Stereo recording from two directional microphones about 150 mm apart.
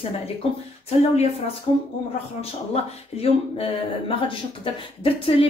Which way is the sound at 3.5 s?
35° left (ahead or behind).